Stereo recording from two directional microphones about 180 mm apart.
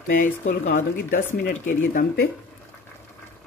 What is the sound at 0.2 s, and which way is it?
Speech, 45° left (ahead or behind).